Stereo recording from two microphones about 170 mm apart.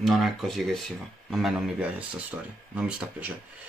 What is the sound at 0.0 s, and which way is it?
Speech, centre (ahead or behind).